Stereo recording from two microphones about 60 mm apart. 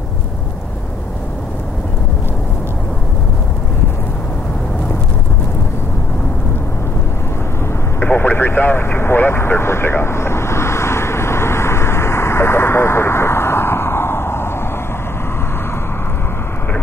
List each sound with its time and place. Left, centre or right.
8.0 s vehicle: left